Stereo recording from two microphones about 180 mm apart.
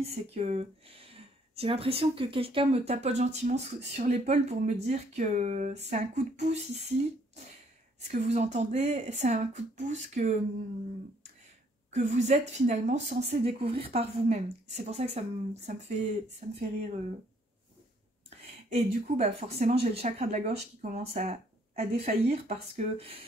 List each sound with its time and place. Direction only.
0.0 s speech: 35° right (ahead or behind)
8.0 s speech: 40° right (ahead or behind)
11.9 s speech: 40° right (ahead or behind)
18.7 s speech: 40° right (ahead or behind)